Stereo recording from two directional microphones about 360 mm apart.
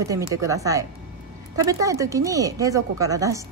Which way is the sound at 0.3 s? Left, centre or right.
Centre.